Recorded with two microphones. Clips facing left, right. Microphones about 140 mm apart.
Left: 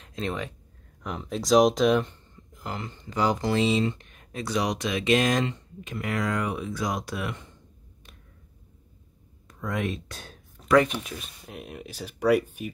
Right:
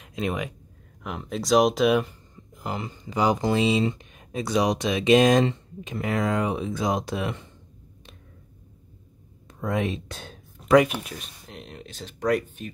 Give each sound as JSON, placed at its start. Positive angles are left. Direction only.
{"t": 0.0, "sound": "speech", "side_deg": -10}
{"t": 1.0, "sound": "speech", "side_deg": 0}
{"t": 9.5, "sound": "a sound", "side_deg": -25}
{"t": 10.8, "sound": "speech", "side_deg": -5}